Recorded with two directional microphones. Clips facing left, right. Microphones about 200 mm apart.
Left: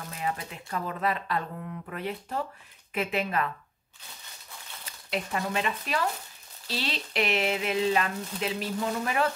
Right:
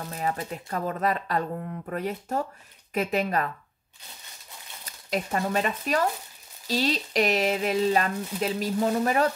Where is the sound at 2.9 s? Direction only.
40° right (ahead or behind).